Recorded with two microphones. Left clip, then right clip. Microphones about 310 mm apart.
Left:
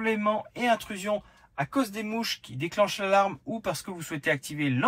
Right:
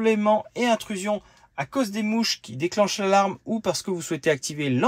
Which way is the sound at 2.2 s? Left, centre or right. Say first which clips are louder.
Right 6 dB; centre.